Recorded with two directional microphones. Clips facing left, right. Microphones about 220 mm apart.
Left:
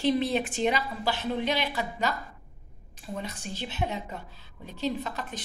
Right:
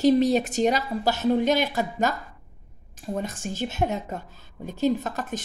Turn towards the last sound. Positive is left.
turn(degrees=-45)  # may be behind; listen again after turning